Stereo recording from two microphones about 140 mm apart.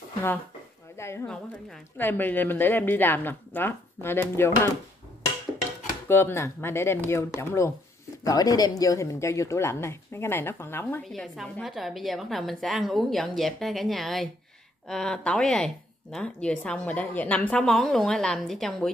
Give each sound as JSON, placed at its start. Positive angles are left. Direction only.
{"t": 0.9, "sound": "speech", "side_deg": 20}
{"t": 6.0, "sound": "a woman's voice", "side_deg": 15}
{"t": 11.1, "sound": "a woman's voice", "side_deg": 0}